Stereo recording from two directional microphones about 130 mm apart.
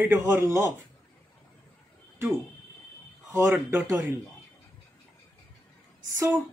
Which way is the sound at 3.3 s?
20° right (ahead or behind).